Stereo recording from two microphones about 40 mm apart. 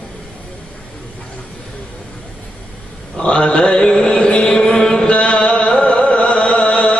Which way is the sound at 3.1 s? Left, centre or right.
Left.